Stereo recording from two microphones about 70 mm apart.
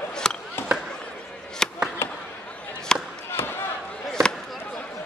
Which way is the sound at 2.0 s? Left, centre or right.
Left.